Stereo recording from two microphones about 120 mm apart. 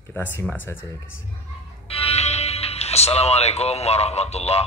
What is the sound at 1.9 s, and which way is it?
A man's voice, 55° left (ahead or behind).